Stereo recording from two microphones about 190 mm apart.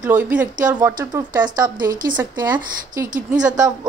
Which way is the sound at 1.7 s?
45° right (ahead or behind).